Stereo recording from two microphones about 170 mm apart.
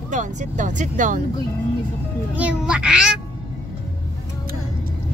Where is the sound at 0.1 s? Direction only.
45° right (ahead or behind).